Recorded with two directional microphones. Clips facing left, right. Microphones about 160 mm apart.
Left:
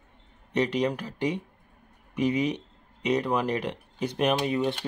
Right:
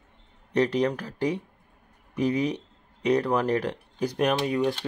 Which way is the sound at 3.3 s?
10° left (ahead or behind).